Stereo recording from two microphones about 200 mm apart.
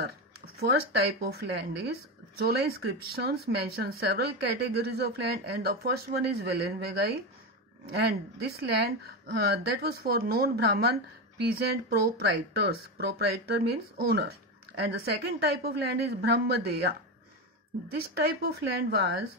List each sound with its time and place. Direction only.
0.6 s a woman's voice: 50° right (ahead or behind)
17.8 s a woman's voice: 55° right (ahead or behind)